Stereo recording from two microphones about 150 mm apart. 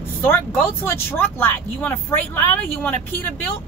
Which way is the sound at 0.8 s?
15° left (ahead or behind).